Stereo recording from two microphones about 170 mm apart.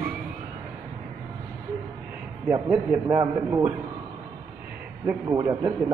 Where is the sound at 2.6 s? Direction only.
10° right (ahead or behind).